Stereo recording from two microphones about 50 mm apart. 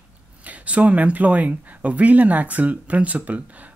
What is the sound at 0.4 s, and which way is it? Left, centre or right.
Speech, right.